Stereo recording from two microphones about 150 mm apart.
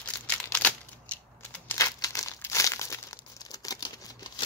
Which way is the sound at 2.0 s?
20° left (ahead or behind).